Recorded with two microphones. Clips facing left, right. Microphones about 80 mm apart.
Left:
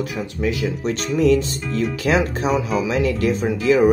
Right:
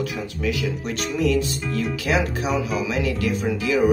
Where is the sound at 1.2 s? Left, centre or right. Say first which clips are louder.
Left 5 dB; left.